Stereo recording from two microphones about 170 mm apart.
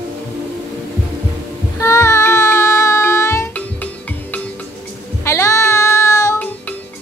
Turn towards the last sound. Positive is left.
turn(degrees=15)  # may be behind; listen again after turning